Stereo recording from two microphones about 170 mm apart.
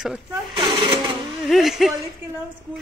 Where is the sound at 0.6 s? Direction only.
30° right (ahead or behind).